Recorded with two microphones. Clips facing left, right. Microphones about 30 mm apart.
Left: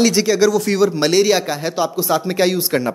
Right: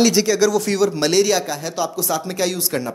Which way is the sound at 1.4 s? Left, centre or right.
Left.